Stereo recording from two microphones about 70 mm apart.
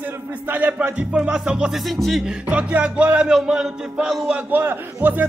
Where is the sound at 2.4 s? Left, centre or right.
Centre.